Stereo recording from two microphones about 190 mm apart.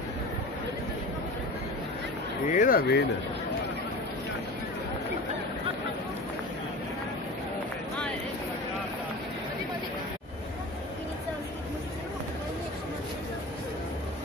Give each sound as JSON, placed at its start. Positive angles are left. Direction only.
{"t": 2.5, "sound": "speech", "side_deg": 45}